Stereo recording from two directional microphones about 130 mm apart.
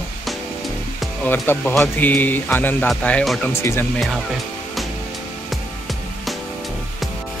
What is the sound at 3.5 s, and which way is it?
Speech, 20° left (ahead or behind).